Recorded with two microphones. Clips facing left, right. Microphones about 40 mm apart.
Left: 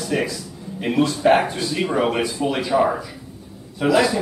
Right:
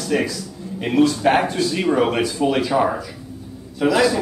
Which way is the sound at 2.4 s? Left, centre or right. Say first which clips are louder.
Right 5 dB; centre.